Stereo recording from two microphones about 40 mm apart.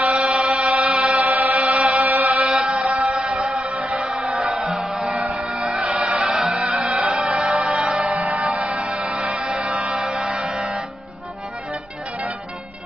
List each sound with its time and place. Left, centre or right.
0.2 s chant: right
1.2 s chant: right
2.4 s mantra: centre
3.0 s music: right
4.6 s music: centre
6.2 s music: centre
6.5 s music: right
6.8 s music: right
8.0 s music: right